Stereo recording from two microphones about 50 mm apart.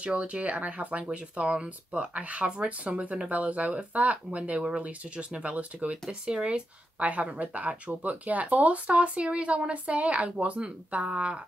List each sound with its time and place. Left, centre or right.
0.0 s speech: right